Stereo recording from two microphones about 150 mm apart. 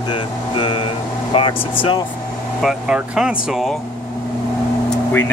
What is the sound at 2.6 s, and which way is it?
Speech, 5° right (ahead or behind).